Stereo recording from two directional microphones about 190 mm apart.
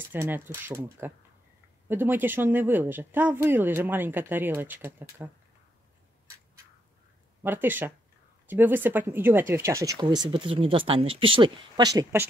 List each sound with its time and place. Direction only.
0.0 s speech: 10° right (ahead or behind)
7.4 s speech: 10° right (ahead or behind)